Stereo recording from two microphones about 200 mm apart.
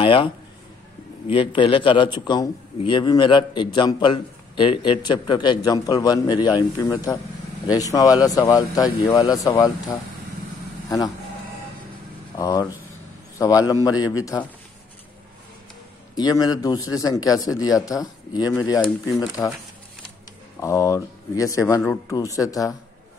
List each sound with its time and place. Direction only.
0.0 s a man's voice: 25° left (ahead or behind)
12.4 s speech: 20° left (ahead or behind)
16.2 s a man's voice: 20° left (ahead or behind)
20.6 s speech: 15° left (ahead or behind)